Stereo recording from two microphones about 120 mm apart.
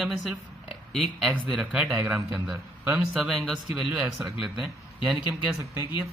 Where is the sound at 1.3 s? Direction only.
10° right (ahead or behind).